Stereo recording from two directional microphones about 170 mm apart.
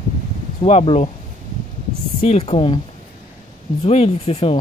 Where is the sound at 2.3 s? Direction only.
35° left (ahead or behind).